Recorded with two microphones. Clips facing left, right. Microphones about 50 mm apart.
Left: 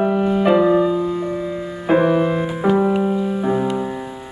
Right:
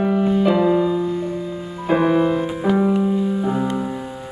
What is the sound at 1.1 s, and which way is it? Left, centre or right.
Music, left.